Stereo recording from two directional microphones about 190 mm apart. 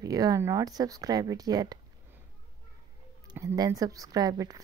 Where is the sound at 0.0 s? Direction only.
20° right (ahead or behind).